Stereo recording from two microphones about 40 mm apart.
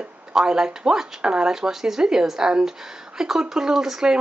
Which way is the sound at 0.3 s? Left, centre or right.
Centre.